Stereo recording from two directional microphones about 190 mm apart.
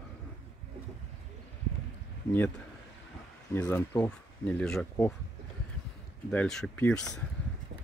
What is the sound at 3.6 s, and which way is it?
Speech, 15° left (ahead or behind).